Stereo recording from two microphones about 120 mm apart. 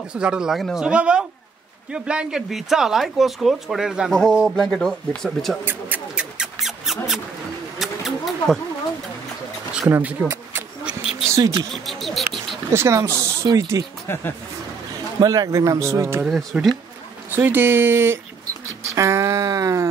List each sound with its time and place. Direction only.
0.1 s speech: 10° right (ahead or behind)
5.7 s a sound: 10° right (ahead or behind)
9.8 s speech: 20° right (ahead or behind)
11.7 s a sound: centre (ahead or behind)
12.7 s speech: 25° right (ahead or behind)
15.1 s speech: 30° right (ahead or behind)
16.3 s speech: centre (ahead or behind)
17.3 s speech: 15° right (ahead or behind)
18.9 s a sound: 25° right (ahead or behind)